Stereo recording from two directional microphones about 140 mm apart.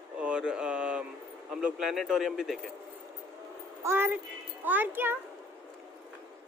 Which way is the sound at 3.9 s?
15° right (ahead or behind).